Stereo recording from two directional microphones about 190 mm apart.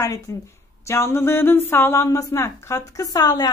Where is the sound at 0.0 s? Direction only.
15° left (ahead or behind).